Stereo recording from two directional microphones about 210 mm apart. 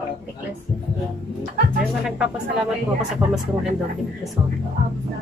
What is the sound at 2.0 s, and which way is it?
Speech, 5° right (ahead or behind).